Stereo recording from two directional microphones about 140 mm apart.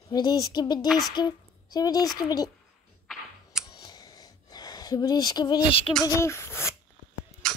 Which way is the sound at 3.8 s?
25° left (ahead or behind).